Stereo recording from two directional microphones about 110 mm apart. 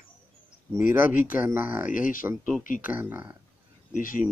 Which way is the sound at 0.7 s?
20° right (ahead or behind).